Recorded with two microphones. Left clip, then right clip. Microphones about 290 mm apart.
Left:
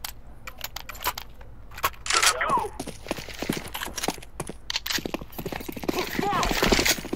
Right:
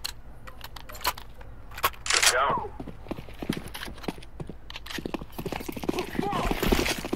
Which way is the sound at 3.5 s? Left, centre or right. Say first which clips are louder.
Left 5 dB; centre.